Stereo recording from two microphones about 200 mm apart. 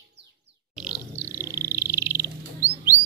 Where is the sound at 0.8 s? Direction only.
10° right (ahead or behind).